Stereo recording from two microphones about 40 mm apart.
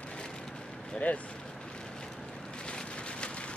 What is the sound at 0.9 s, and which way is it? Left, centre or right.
Speech, left.